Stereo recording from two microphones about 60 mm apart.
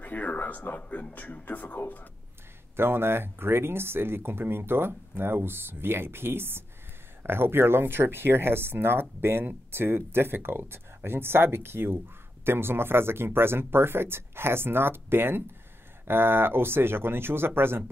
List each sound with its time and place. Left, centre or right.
0.0 s speech: left
2.7 s speech: right